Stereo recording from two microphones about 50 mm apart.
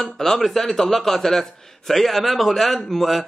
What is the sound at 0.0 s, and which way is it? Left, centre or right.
A man's voice, centre.